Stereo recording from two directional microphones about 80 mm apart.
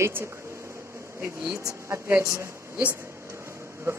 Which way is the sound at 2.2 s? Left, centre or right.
Right.